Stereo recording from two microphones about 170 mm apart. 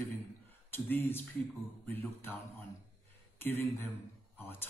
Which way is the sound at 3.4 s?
10° left (ahead or behind).